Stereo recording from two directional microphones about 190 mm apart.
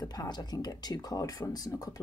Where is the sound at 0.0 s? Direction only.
20° left (ahead or behind).